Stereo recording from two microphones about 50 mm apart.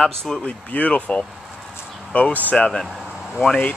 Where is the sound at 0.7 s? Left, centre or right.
Left.